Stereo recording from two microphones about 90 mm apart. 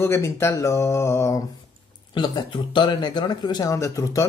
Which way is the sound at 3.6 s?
35° left (ahead or behind).